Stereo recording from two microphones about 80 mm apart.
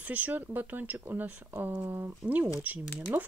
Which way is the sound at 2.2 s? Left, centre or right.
Centre.